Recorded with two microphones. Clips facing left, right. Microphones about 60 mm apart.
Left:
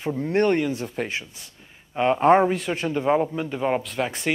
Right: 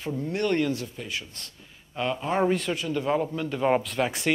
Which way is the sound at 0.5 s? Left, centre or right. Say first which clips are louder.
Left 2 dB; left.